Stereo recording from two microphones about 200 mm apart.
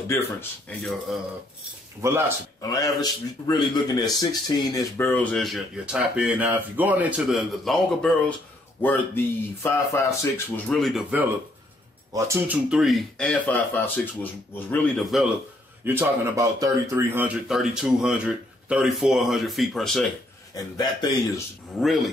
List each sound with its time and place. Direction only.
0.1 s speech: 10° left (ahead or behind)
2.0 s speech: 15° right (ahead or behind)
2.7 s speech: 20° left (ahead or behind); by 15.2 s centre (ahead or behind)
15.8 s speech: 10° right (ahead or behind)
20.5 s a man's voice: 20° left (ahead or behind)
21.7 s speech: centre (ahead or behind)